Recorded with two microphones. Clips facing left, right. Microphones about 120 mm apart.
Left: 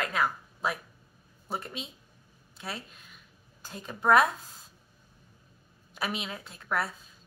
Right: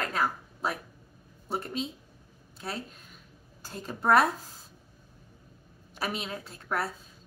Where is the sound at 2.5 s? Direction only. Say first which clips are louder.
Right 3 dB; 35° right (ahead or behind).